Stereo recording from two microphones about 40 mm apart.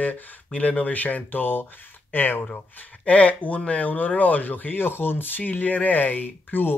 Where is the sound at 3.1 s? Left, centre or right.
Left.